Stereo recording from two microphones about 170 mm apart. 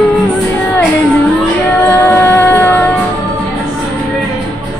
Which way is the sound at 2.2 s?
10° left (ahead or behind).